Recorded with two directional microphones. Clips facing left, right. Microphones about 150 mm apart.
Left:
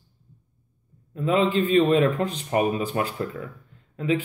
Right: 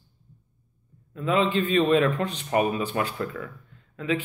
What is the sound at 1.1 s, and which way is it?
Speech, 35° left (ahead or behind).